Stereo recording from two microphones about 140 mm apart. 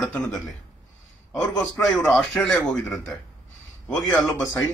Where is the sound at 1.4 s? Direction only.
10° left (ahead or behind).